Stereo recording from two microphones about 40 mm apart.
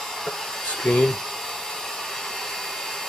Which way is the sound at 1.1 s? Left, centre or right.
Centre.